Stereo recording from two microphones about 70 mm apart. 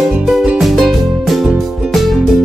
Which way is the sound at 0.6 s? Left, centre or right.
Centre.